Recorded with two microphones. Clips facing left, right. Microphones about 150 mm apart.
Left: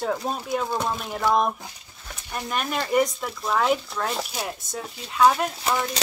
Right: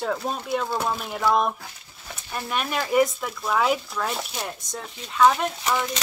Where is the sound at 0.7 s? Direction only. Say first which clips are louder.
Even; 5° right (ahead or behind).